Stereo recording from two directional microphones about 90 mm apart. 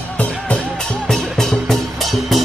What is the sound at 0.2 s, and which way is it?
Music, 10° left (ahead or behind).